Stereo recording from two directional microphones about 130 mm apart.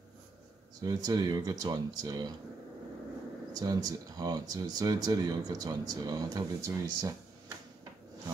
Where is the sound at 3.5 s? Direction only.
25° right (ahead or behind).